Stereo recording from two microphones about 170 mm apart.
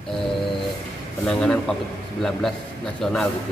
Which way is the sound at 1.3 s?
5° left (ahead or behind).